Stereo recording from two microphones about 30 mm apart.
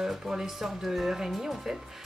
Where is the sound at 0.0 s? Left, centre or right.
Centre.